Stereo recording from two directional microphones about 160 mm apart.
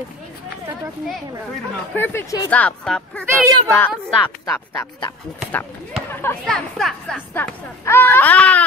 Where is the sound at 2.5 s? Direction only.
5° left (ahead or behind).